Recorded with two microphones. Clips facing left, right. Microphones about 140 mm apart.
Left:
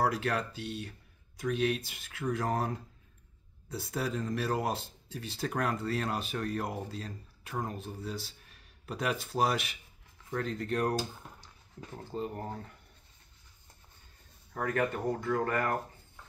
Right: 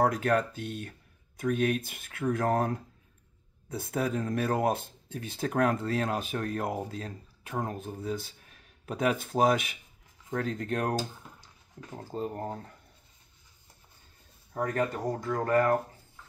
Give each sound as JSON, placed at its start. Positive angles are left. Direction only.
{"t": 0.0, "sound": "speech", "side_deg": -50}
{"t": 14.5, "sound": "speech", "side_deg": -35}